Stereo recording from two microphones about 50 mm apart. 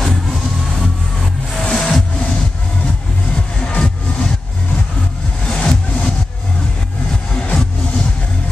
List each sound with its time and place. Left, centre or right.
0.0 s music: centre
1.5 s music: centre
3.5 s music: left
5.5 s music: centre
7.3 s music: left